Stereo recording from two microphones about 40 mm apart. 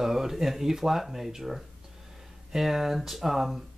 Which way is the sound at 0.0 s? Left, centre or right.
Centre.